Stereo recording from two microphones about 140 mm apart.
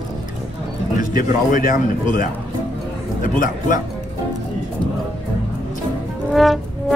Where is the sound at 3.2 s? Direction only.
75° left (ahead or behind).